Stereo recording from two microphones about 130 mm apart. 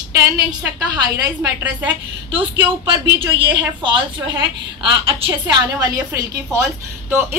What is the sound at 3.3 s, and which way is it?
A woman's voice, 40° right (ahead or behind).